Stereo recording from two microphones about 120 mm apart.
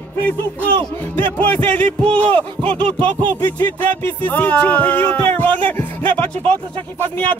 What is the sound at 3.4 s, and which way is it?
Speech, 15° left (ahead or behind).